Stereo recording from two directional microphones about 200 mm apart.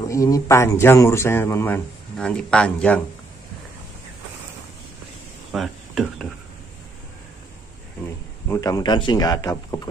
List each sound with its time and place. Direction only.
0.0 s speech: 15° left (ahead or behind)
5.5 s a sound: centre (ahead or behind)
8.5 s speech: 15° left (ahead or behind)